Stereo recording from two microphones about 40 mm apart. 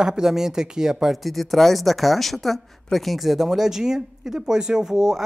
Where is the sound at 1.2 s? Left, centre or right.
Centre.